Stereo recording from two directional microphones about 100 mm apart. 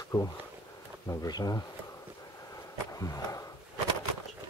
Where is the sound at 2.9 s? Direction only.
35° left (ahead or behind).